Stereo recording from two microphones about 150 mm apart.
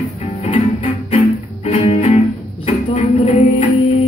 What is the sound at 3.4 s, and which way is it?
Music, 60° left (ahead or behind).